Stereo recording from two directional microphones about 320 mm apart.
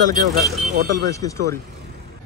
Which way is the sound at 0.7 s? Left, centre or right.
Right.